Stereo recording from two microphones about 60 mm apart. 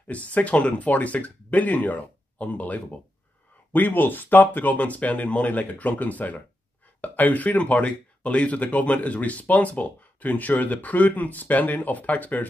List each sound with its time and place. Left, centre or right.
0.0 s speech: left